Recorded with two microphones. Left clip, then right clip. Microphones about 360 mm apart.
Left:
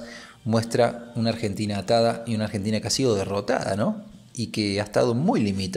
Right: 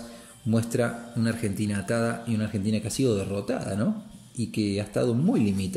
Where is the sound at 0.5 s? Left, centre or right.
Centre.